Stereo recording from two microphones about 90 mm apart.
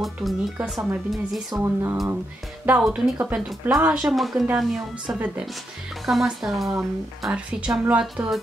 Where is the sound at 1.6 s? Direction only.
30° right (ahead or behind).